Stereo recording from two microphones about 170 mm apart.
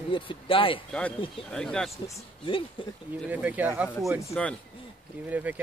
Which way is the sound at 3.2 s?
10° right (ahead or behind).